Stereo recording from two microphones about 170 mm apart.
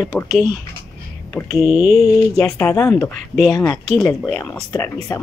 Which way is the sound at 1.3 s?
20° left (ahead or behind).